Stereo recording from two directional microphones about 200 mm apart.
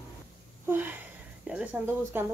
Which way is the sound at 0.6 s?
10° right (ahead or behind).